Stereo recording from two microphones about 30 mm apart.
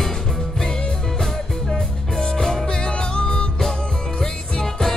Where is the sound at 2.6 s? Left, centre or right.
Left.